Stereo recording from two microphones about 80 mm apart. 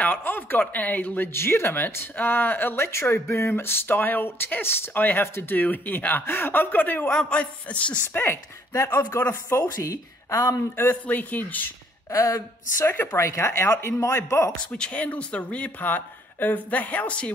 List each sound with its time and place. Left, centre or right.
0.0 s speech: left
7.1 s speech: centre
8.2 s speech: left
9.8 s a woman's voice: left
10.8 s speech: left
12.1 s speech: left
12.4 s speech: left
14.6 s speech: centre